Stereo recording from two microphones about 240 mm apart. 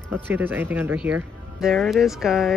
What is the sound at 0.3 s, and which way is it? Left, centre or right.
Speech, centre.